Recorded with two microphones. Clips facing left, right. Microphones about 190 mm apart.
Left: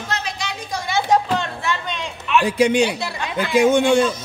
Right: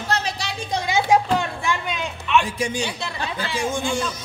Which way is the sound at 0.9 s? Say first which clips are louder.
Even; 10° right (ahead or behind).